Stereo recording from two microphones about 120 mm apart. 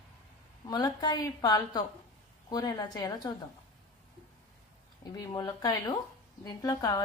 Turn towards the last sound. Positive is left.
turn(degrees=35)  # may be behind; listen again after turning